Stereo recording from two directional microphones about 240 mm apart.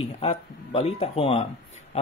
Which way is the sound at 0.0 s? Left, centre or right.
Left.